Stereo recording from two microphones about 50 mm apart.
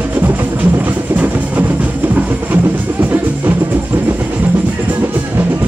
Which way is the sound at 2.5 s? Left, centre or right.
Right.